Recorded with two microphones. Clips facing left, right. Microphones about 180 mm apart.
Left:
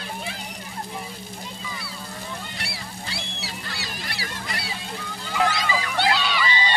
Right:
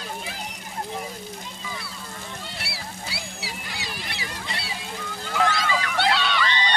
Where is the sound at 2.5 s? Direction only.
5° right (ahead or behind).